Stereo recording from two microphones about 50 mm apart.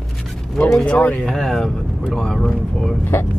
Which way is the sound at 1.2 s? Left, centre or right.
Centre.